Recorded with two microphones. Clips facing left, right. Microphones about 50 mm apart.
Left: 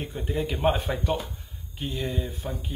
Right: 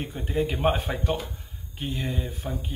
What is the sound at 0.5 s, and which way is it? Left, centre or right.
Speech, right.